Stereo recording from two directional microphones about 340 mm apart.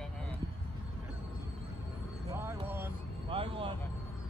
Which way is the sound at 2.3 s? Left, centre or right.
Centre.